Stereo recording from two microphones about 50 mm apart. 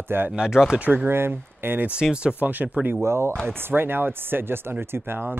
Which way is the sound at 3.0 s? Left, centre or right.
Right.